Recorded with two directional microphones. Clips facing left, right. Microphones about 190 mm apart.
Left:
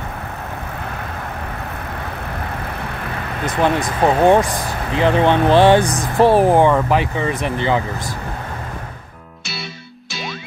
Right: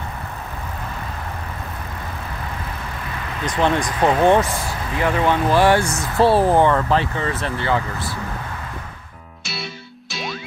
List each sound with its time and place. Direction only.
3.4 s speech: 5° left (ahead or behind)